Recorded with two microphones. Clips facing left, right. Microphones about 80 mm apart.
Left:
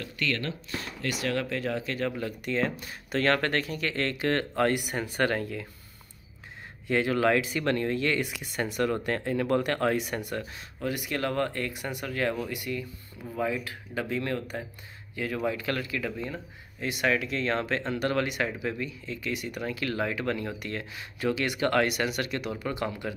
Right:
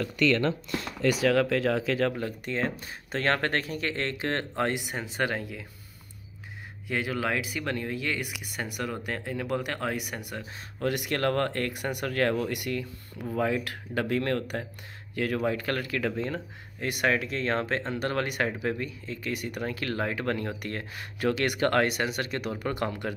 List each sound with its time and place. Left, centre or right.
1.4 s speech: right
2.1 s speech: right; by 5.7 s centre
6.9 s speech: centre
10.8 s speech: right
15.3 s speech: right
16.8 s speech: right
22.4 s speech: right